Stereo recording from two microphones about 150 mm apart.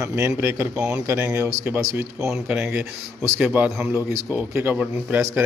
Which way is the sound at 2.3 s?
5° right (ahead or behind).